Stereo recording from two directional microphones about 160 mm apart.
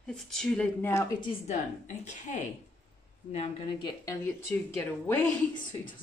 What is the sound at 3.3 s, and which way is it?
Speech, 35° left (ahead or behind).